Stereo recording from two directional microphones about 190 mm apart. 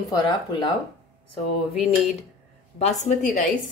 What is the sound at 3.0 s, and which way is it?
Speech, 40° left (ahead or behind).